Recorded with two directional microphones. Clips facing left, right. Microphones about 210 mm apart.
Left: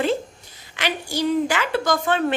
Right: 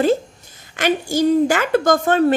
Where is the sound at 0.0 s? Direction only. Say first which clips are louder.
Right 5 dB; 45° right (ahead or behind).